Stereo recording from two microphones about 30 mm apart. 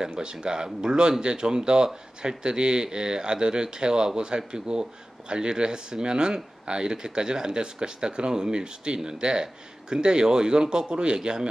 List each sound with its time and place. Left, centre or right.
0.1 s speech: right
11.1 s speech: right